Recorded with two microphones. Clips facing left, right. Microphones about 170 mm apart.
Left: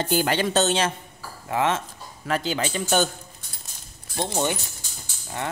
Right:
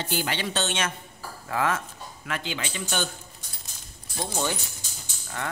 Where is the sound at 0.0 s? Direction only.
45° left (ahead or behind).